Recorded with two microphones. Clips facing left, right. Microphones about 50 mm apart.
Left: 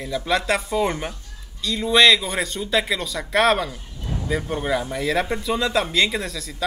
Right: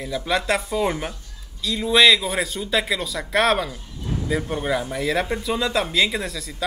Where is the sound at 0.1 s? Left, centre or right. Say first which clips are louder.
Left 1 dB; centre.